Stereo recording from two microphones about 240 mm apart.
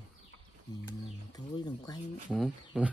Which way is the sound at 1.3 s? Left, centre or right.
Centre.